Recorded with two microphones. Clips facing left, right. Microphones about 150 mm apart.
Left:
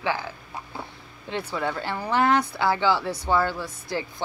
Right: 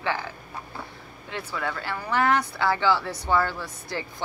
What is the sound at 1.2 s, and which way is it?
Speech, 25° left (ahead or behind).